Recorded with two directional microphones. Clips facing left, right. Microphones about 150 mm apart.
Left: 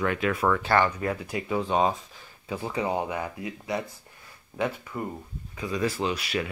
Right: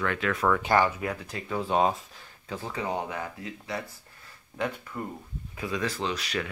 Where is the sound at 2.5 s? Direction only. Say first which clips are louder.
Left 3 dB; 15° left (ahead or behind).